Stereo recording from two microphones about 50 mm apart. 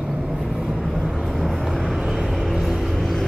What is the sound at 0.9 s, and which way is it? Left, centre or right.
Vehicle, centre.